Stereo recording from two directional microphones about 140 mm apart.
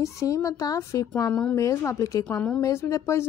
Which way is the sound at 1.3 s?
5° left (ahead or behind).